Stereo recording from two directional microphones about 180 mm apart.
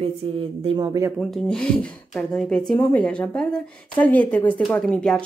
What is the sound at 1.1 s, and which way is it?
Speech, centre (ahead or behind).